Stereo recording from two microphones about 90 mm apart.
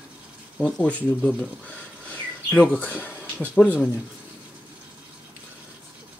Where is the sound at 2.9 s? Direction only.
20° left (ahead or behind).